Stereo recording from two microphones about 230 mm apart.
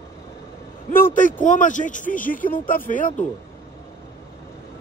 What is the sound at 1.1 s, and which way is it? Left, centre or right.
Speech, left.